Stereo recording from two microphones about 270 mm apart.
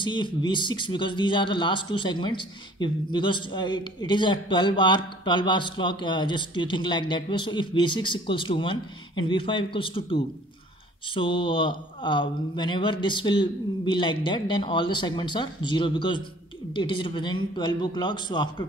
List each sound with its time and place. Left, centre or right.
0.0 s speech: centre